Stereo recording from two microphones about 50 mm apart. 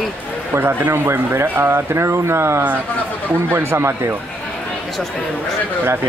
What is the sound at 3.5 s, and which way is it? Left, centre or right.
Speech, right.